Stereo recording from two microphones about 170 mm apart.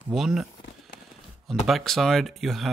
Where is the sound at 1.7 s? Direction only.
Centre (ahead or behind).